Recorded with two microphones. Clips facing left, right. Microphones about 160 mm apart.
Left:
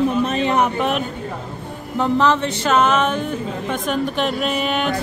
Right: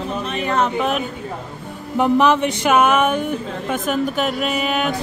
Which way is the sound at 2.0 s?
15° right (ahead or behind).